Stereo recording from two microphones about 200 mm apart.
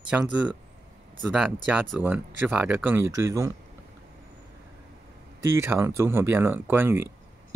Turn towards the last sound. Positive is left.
turn(degrees=-10)  # may be behind; listen again after turning